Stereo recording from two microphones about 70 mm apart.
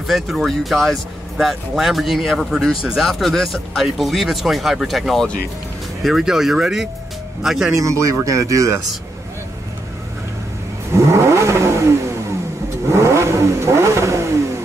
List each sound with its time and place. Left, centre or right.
0.0 s speech: centre
7.7 s speech: right
11.1 s vehicle: right
12.9 s vehicle: right